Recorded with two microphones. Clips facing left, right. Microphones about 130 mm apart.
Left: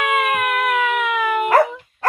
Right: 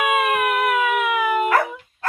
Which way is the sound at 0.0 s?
5° right (ahead or behind).